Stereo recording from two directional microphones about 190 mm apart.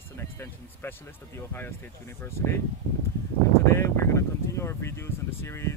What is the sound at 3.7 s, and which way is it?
Speech, 15° left (ahead or behind).